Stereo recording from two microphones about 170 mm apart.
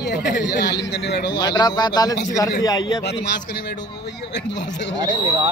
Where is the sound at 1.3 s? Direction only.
25° left (ahead or behind).